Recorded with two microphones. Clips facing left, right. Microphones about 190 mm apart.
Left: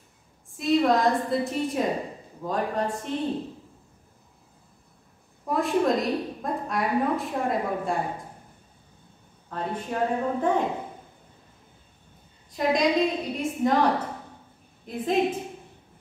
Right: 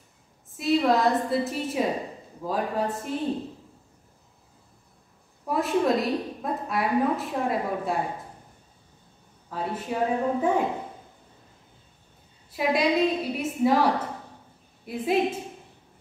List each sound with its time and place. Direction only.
0.6 s a woman's voice: 5° right (ahead or behind)
5.5 s a woman's voice: 5° right (ahead or behind)
9.5 s a woman's voice: 5° right (ahead or behind)
12.4 s a woman's voice: 5° right (ahead or behind)